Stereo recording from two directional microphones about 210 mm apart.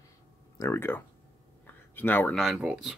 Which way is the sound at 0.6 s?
10° left (ahead or behind).